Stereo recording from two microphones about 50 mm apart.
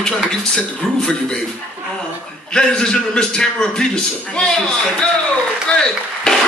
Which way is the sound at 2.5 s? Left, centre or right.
Centre.